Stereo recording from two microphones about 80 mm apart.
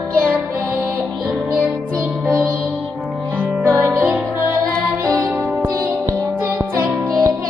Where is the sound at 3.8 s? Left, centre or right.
Right.